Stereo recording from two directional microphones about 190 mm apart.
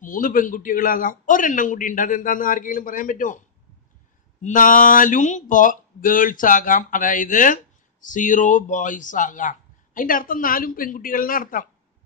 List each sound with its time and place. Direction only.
0.0 s speech: 45° left (ahead or behind)